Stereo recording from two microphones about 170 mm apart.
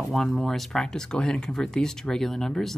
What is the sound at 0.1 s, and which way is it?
Speech, centre (ahead or behind).